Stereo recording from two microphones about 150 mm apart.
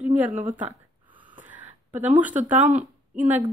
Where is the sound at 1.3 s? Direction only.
10° right (ahead or behind).